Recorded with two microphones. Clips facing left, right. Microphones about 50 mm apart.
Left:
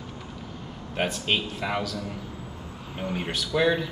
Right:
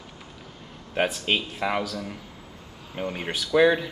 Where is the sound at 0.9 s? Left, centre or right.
Centre.